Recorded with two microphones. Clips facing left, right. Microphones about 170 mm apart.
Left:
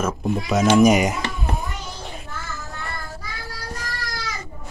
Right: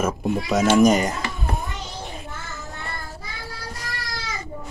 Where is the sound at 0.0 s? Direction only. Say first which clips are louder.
Even; 5° right (ahead or behind).